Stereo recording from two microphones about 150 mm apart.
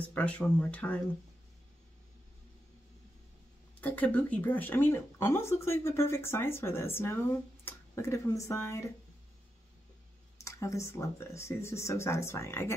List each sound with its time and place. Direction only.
0.1 s speech: 10° left (ahead or behind)
3.8 s speech: 10° left (ahead or behind)
10.4 s speech: 20° left (ahead or behind)